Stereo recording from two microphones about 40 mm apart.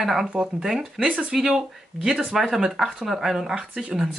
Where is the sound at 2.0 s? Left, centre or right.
Right.